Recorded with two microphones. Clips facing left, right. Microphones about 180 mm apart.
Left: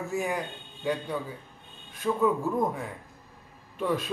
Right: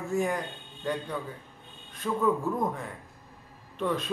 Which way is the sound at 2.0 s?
10° left (ahead or behind).